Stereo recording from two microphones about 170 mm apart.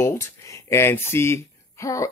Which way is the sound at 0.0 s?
15° left (ahead or behind).